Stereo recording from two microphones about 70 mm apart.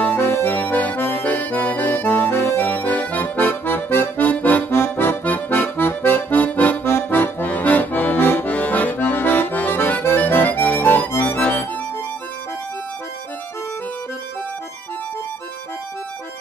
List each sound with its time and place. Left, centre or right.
0.0 s accordion: left
1.2 s music: left
4.7 s accordion: left
6.9 s accordion: left